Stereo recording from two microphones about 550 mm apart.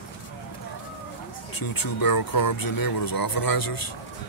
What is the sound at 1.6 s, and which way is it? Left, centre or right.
Speech, left.